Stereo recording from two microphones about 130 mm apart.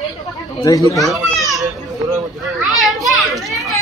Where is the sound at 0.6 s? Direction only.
25° left (ahead or behind).